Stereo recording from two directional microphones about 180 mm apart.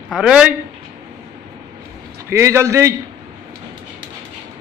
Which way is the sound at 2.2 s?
15° right (ahead or behind).